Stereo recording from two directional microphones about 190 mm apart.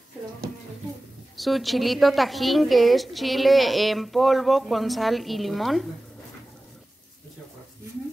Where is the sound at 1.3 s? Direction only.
Centre (ahead or behind).